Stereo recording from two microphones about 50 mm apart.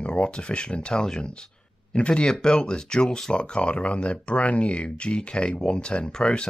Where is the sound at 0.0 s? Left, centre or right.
Centre.